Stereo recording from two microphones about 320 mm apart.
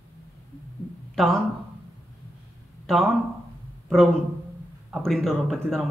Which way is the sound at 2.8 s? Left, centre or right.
Centre.